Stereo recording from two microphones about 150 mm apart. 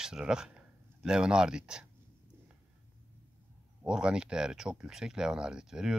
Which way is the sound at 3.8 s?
5° right (ahead or behind).